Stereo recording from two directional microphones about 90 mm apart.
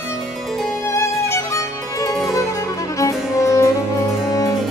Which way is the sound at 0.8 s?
35° left (ahead or behind).